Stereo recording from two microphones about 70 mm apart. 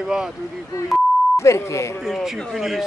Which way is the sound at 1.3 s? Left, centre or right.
Left.